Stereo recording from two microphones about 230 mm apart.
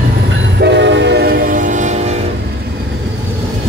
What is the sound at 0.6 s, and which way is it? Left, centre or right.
Train, right.